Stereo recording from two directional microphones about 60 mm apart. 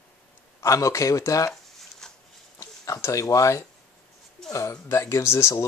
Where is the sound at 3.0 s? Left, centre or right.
Left.